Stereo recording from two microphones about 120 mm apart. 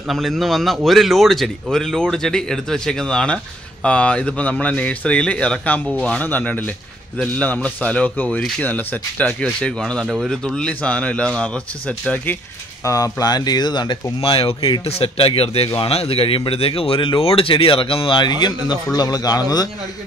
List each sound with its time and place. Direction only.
0.1 s speech: centre (ahead or behind)
12.8 s speech: 30° left (ahead or behind)
14.2 s speech: 50° left (ahead or behind); by 19.7 s 35° left (ahead or behind)